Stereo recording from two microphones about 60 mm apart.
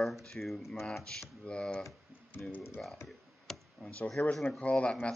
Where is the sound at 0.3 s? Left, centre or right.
Centre.